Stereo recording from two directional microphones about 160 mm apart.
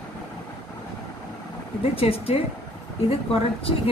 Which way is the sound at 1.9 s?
35° left (ahead or behind).